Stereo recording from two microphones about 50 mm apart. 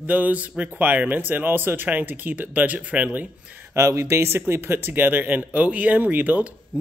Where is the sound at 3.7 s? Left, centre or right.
Right.